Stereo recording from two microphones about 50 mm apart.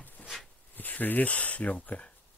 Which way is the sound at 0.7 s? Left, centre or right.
Left.